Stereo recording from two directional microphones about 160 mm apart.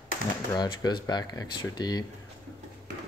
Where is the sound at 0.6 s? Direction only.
25° left (ahead or behind).